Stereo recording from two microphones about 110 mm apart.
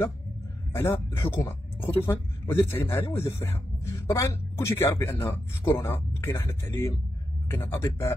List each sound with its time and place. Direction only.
0.7 s a man's voice: 25° left (ahead or behind)